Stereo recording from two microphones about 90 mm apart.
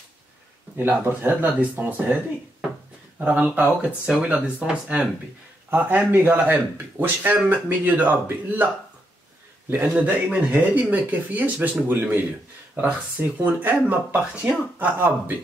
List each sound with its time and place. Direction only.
0.7 s speech: 20° right (ahead or behind)
3.2 s speech: 15° right (ahead or behind)
9.7 s speech: 20° right (ahead or behind)